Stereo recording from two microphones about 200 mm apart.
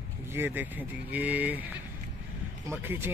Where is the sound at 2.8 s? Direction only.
10° right (ahead or behind).